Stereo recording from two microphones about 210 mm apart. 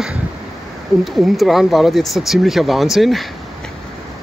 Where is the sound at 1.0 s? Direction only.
Centre (ahead or behind).